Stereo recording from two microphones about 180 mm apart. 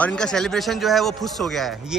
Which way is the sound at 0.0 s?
5° left (ahead or behind).